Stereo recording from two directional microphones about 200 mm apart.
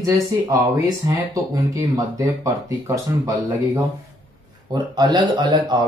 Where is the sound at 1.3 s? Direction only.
15° right (ahead or behind).